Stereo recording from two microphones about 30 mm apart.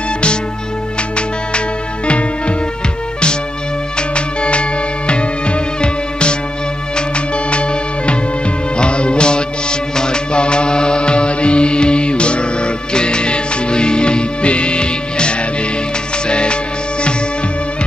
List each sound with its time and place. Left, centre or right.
2.0 s music: left
4.1 s music: left
7.5 s music: left